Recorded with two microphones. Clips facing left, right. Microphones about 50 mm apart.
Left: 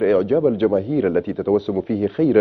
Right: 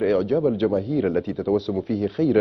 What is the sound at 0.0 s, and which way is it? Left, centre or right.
Speech, centre.